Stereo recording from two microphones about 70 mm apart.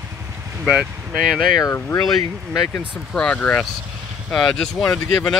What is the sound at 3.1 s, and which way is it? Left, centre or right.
Speech, centre.